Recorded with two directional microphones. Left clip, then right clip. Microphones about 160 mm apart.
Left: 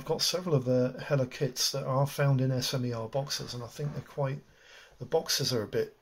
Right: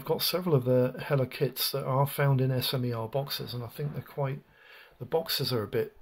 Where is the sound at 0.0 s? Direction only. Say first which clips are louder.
Right 1 dB; 30° right (ahead or behind).